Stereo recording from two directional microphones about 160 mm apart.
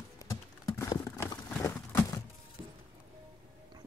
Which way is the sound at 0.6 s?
20° left (ahead or behind).